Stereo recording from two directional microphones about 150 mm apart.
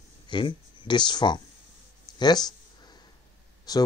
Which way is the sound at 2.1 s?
30° left (ahead or behind).